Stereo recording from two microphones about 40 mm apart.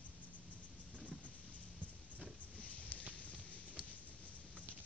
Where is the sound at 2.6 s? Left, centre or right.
Left.